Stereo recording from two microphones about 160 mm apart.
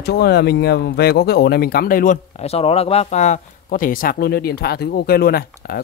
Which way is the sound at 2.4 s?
40° left (ahead or behind).